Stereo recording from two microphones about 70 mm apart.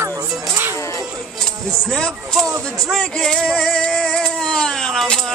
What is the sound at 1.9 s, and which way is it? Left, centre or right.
Speech, centre.